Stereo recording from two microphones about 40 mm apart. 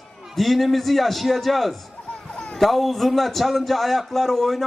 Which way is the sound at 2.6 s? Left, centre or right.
Centre.